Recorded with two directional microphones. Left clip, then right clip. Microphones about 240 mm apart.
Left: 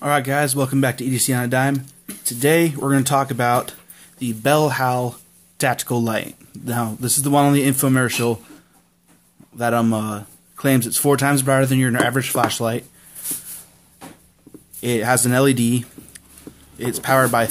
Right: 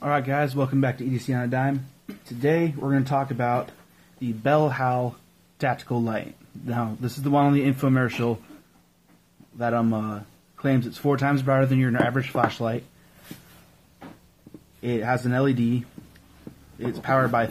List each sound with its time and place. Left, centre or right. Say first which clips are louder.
0.0 s speech: left 5 dB; centre
9.6 s speech: left 5 dB; left
14.8 s speech: left 6 dB; left